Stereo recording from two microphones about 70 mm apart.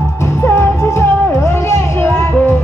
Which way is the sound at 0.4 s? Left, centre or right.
Left.